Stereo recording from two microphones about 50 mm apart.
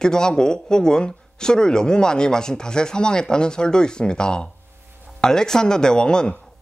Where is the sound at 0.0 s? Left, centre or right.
Centre.